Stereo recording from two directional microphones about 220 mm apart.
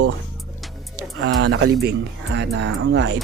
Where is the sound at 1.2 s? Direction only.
75° right (ahead or behind); by 3.1 s 50° right (ahead or behind).